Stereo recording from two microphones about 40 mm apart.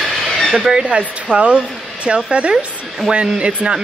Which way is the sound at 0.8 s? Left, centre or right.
Right.